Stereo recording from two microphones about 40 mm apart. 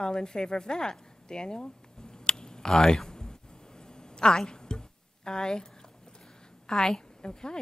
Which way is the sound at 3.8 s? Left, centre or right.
Centre.